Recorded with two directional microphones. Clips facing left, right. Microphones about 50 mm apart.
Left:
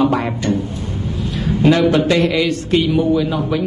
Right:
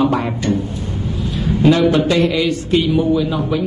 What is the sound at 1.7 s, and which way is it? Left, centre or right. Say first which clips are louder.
Speech: even; left.